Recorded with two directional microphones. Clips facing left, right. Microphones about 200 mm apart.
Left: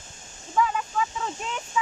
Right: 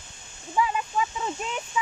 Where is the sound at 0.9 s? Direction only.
20° right (ahead or behind).